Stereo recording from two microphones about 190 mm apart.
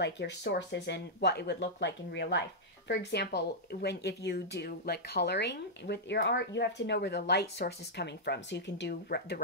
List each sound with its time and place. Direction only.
0.0 s speech: 65° left (ahead or behind)